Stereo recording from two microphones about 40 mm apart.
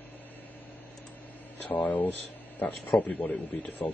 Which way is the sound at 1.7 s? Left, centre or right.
Left.